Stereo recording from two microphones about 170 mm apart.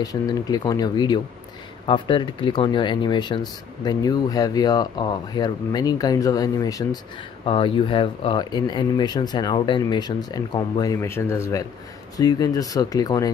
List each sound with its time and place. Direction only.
0.0 s speech: 20° left (ahead or behind)
7.4 s speech: 30° left (ahead or behind)